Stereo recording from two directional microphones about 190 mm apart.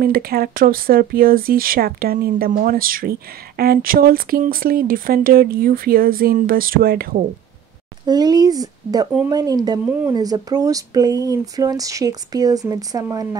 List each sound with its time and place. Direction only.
0.0 s speech: 50° right (ahead or behind)
8.1 s speech: 20° right (ahead or behind)